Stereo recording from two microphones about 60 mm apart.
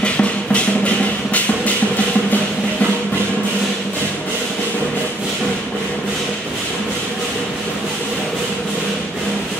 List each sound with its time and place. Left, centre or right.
0.0 s music: centre